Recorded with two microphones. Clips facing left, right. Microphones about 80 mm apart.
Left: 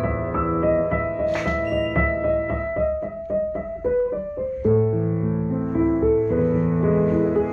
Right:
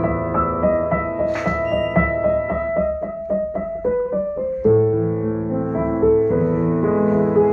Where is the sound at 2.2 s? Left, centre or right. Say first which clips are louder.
Right 3 dB; centre.